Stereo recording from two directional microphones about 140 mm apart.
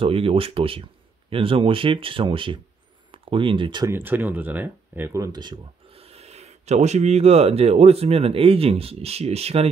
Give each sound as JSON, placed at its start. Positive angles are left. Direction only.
{"t": 0.0, "sound": "speech", "side_deg": -40}
{"t": 3.8, "sound": "speech", "side_deg": -15}